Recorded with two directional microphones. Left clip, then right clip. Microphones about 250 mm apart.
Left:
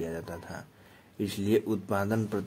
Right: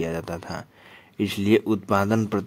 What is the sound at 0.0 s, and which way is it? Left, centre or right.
A man's voice, right.